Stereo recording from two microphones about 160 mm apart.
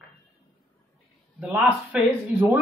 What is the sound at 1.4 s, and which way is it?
A woman's voice, 10° right (ahead or behind).